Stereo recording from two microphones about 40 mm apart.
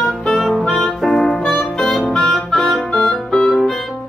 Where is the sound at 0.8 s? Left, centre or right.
Centre.